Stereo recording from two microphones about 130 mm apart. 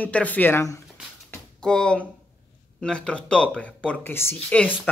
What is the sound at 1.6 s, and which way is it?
Speech, 5° left (ahead or behind).